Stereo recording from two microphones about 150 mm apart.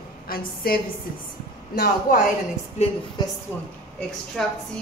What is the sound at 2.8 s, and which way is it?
Speech, 45° left (ahead or behind).